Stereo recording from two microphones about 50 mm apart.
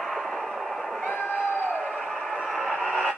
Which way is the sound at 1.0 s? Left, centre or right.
Centre.